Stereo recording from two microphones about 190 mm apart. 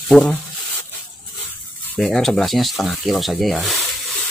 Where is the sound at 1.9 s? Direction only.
Centre (ahead or behind).